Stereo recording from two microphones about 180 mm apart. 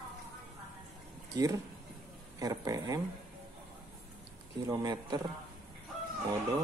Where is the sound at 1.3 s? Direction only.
20° right (ahead or behind).